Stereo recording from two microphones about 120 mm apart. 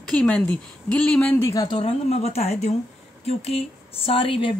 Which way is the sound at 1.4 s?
30° left (ahead or behind).